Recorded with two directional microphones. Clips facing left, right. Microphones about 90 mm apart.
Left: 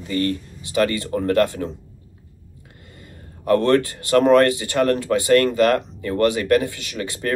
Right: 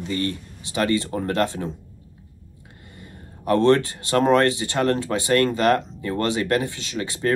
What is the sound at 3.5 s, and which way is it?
Speech, 25° right (ahead or behind).